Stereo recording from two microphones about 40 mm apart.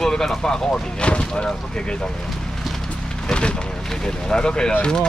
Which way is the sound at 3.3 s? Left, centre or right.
Left.